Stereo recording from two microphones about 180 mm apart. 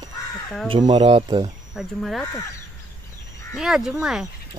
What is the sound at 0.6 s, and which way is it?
Speech, 25° right (ahead or behind).